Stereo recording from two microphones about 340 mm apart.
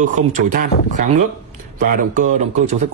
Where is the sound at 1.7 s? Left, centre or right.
Right.